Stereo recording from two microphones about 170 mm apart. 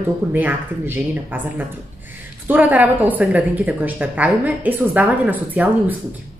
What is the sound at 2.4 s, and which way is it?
A woman's voice, 10° right (ahead or behind).